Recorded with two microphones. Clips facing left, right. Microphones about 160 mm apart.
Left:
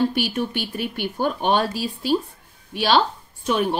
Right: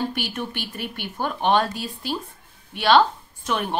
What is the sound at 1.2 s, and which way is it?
Speech, 30° left (ahead or behind).